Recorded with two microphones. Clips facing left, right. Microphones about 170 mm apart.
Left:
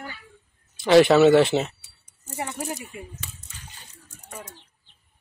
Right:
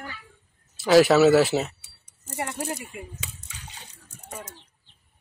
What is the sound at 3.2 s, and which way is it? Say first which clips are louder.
Water: right 2 dB; 75° right (ahead or behind).